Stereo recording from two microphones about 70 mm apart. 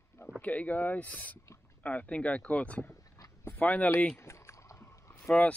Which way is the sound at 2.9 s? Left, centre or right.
Left.